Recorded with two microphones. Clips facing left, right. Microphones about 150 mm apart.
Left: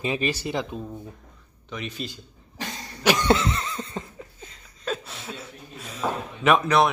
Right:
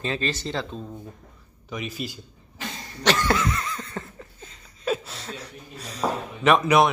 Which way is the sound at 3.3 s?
25° left (ahead or behind).